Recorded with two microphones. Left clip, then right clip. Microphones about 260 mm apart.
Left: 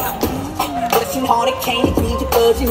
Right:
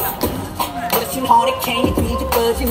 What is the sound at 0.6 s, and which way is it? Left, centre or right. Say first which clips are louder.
Music: left 3 dB; centre.